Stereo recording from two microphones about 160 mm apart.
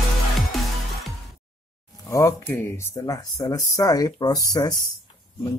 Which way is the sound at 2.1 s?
20° left (ahead or behind).